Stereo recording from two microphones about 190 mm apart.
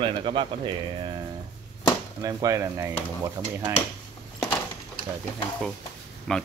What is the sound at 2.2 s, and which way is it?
Speech, 20° right (ahead or behind).